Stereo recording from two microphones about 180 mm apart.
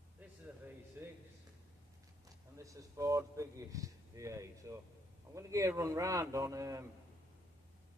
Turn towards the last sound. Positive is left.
turn(degrees=-15)  # may be behind; listen again after turning